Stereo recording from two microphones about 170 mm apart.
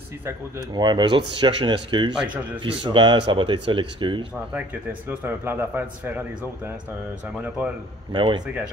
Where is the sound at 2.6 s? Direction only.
30° right (ahead or behind).